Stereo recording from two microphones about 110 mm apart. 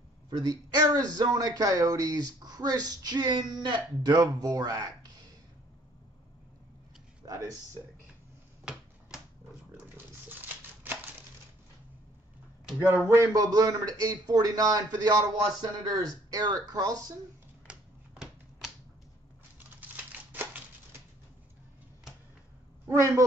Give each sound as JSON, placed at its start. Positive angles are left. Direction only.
{"t": 0.4, "sound": "speech", "side_deg": -40}
{"t": 7.2, "sound": "speech", "side_deg": -30}
{"t": 10.4, "sound": "a sound", "side_deg": -15}
{"t": 13.1, "sound": "speech", "side_deg": -30}
{"t": 17.6, "sound": "typewriter", "side_deg": -5}
{"t": 20.0, "sound": "typewriter", "side_deg": -15}
{"t": 22.8, "sound": "speech", "side_deg": -25}